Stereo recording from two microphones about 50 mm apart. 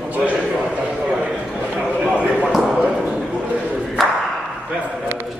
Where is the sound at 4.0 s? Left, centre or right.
Centre.